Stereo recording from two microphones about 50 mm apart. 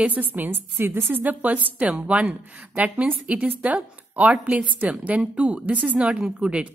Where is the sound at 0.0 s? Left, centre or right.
Right.